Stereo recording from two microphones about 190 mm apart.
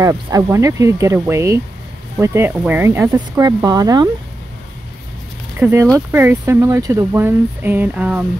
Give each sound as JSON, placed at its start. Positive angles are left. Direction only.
{"t": 0.0, "sound": "speech", "side_deg": -15}
{"t": 5.6, "sound": "speech", "side_deg": -15}